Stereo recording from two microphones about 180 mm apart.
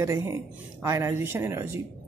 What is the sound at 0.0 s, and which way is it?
Speech, 15° right (ahead or behind).